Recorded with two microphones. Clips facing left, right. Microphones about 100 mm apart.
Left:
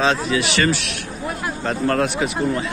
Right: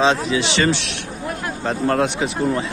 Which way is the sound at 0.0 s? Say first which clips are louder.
Right 1 dB; 20° right (ahead or behind).